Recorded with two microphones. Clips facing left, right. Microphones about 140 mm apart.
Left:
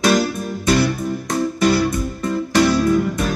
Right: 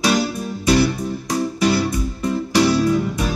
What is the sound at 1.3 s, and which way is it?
Music, 50° left (ahead or behind).